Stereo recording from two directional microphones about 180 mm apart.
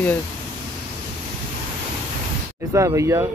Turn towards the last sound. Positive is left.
turn(degrees=-15)  # may be behind; listen again after turning